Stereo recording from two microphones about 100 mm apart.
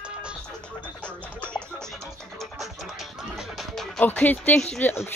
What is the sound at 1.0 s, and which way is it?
Music, 10° left (ahead or behind).